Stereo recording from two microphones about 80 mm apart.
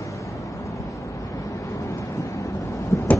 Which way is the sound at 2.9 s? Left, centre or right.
Left.